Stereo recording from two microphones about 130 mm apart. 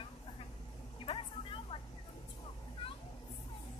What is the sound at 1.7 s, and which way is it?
Vehicle, 40° left (ahead or behind).